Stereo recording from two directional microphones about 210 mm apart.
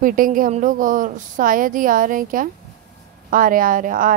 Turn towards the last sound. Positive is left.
turn(degrees=-40)  # may be behind; listen again after turning